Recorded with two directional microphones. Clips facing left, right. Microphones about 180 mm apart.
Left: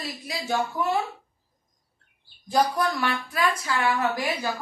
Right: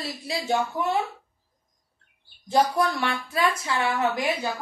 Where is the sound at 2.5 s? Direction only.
25° right (ahead or behind).